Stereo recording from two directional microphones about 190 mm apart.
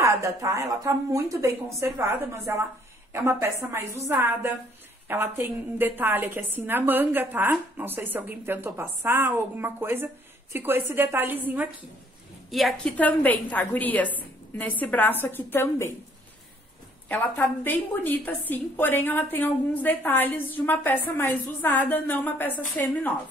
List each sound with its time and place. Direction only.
0.0 s a woman's voice: 15° right (ahead or behind); by 15.9 s 10° left (ahead or behind)
17.1 s a woman's voice: 10° left (ahead or behind)